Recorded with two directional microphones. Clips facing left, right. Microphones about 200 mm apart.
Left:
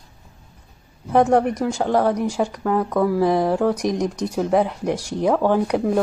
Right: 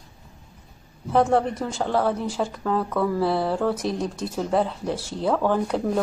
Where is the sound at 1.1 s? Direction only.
15° left (ahead or behind).